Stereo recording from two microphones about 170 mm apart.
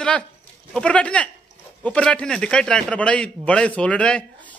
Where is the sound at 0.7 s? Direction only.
5° left (ahead or behind).